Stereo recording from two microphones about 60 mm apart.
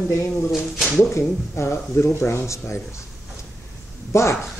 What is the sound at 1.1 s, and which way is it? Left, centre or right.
Speech, left.